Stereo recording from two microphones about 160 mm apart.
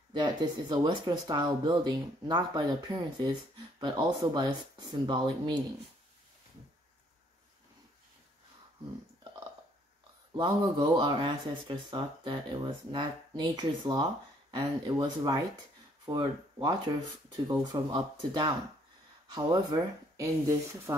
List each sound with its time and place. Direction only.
0.1 s speech: 30° right (ahead or behind)
10.3 s speech: 25° right (ahead or behind)